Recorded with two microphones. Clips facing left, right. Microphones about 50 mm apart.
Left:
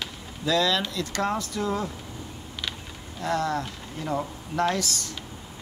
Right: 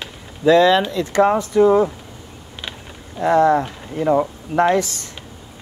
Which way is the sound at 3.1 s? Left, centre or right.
Right.